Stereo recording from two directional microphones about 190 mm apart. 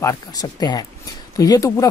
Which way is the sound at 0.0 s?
15° left (ahead or behind).